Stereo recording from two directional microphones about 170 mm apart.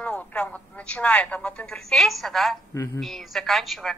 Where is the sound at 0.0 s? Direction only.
5° left (ahead or behind).